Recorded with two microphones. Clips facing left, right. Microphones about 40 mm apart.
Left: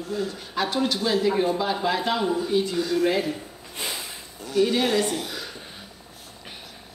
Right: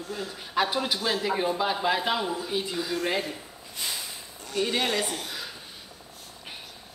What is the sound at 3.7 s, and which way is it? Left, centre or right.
Snort, centre.